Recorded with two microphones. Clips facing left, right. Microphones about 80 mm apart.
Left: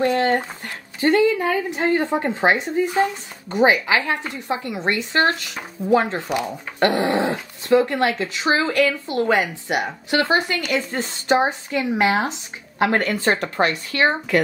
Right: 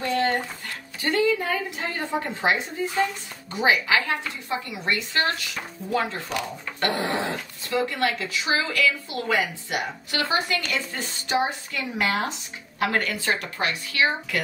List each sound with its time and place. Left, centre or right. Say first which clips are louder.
1.0 s a woman's voice: left 6 dB; left
1.8 s a woman's voice: left 8 dB; left
9.7 s a woman's voice: left 7 dB; left
11.7 s a woman's voice: left 7 dB; left